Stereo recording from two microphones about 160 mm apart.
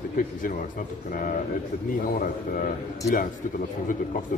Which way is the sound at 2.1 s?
60° left (ahead or behind).